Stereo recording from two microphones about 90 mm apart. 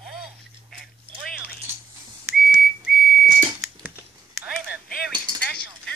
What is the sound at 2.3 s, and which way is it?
Whistle, 5° right (ahead or behind).